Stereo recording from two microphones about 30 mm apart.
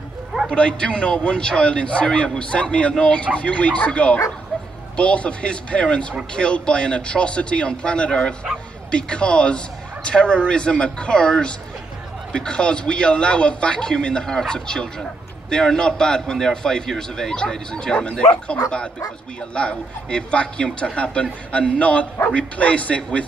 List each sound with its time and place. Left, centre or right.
0.5 s a man's voice: left
14.2 s a man's voice: centre
17.4 s speech: left